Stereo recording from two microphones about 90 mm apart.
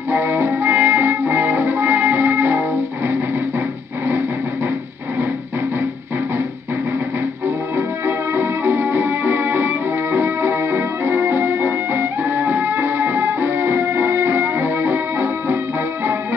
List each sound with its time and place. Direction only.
0.1 s music: 25° right (ahead or behind)
8.4 s music: 25° right (ahead or behind)